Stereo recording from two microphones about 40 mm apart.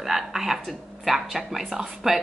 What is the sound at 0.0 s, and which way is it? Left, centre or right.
A woman's voice, centre.